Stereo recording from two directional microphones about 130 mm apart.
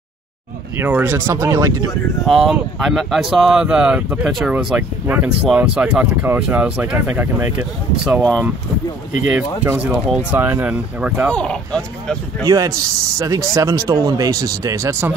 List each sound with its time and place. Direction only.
0.7 s speech: 15° right (ahead or behind)
2.2 s speech: centre (ahead or behind)
8.2 s speech: 10° left (ahead or behind)
9.3 s speech: 10° right (ahead or behind)
11.2 s speech: 5° left (ahead or behind)
12.4 s speech: 25° right (ahead or behind)